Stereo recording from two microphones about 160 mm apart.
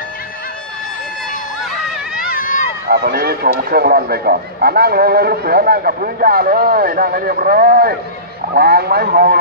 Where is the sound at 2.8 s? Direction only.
90° right.